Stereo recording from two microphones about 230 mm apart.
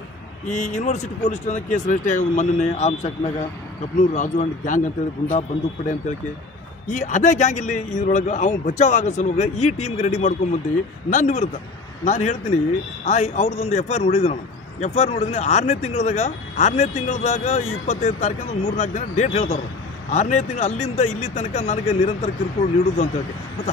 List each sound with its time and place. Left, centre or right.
0.5 s speech: left
6.9 s speech: left